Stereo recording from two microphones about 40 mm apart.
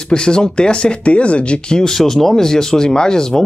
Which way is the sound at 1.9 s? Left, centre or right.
Centre.